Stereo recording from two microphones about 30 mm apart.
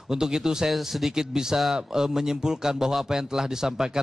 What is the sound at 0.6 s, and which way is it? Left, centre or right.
A man's voice, centre.